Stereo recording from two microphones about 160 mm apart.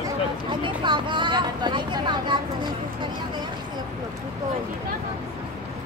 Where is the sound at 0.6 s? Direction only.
30° right (ahead or behind).